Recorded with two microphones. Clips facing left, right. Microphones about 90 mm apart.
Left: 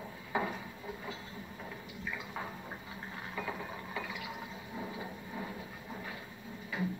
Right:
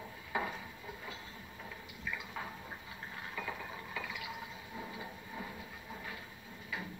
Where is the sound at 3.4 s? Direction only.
10° left (ahead or behind).